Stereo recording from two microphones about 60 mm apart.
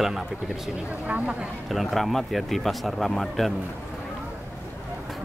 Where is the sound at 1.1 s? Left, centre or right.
Right.